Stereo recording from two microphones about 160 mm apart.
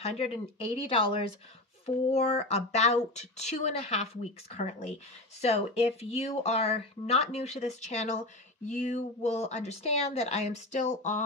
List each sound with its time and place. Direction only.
0.0 s speech: 40° left (ahead or behind)